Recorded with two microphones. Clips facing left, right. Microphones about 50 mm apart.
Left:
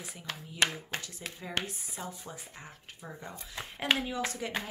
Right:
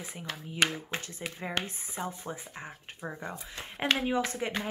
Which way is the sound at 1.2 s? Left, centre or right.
Centre.